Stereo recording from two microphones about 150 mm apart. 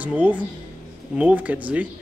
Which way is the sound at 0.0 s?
10° right (ahead or behind).